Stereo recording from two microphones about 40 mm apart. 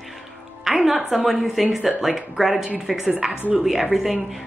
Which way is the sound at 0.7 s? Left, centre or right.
Centre.